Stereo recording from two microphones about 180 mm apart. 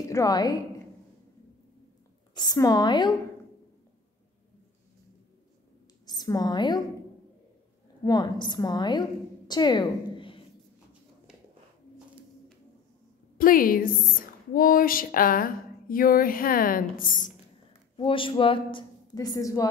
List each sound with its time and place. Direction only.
0.1 s speech: 20° left (ahead or behind)
2.3 s speech: 20° left (ahead or behind)
6.0 s a woman's voice: 20° left (ahead or behind)
8.0 s speech: 20° left (ahead or behind)
9.5 s a sound: 25° left (ahead or behind)
13.4 s a woman's voice: 50° left (ahead or behind)
17.9 s speech: 30° left (ahead or behind)